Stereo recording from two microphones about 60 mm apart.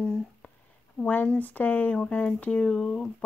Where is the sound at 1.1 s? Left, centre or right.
Left.